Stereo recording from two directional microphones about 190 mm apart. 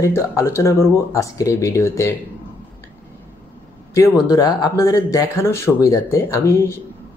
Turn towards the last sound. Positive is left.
turn(degrees=15)  # may be behind; listen again after turning